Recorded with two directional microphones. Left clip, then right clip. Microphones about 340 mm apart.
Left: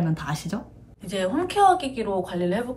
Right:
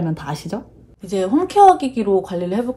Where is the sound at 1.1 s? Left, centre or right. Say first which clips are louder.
Right 7 dB; centre.